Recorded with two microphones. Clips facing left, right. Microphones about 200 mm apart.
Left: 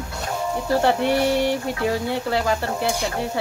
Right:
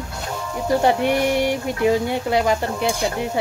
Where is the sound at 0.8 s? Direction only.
15° right (ahead or behind).